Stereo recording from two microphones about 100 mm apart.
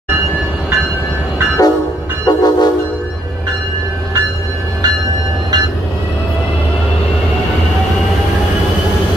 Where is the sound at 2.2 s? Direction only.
45° left (ahead or behind).